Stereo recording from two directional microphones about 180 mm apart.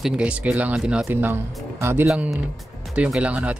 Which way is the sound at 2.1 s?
Centre (ahead or behind).